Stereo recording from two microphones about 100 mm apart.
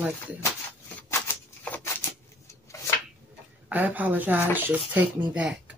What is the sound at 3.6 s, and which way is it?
Speech, 15° right (ahead or behind).